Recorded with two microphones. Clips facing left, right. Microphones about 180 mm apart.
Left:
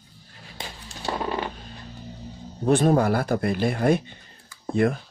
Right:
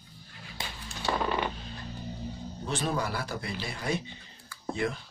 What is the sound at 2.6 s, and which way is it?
Speech, 55° left (ahead or behind).